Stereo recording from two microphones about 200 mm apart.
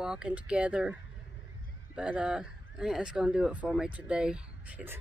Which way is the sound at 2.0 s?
5° right (ahead or behind).